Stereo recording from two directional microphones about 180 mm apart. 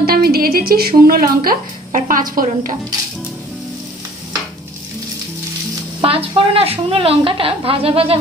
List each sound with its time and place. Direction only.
0.0 s speech: 55° right (ahead or behind)
5.9 s a woman's voice: 30° right (ahead or behind)